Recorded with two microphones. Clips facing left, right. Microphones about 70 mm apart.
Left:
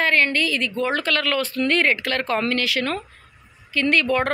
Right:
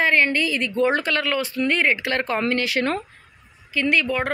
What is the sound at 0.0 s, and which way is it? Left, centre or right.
A woman's voice, centre.